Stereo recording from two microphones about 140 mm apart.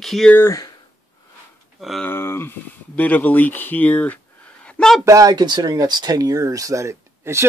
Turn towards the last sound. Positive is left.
turn(degrees=-20)  # may be behind; listen again after turning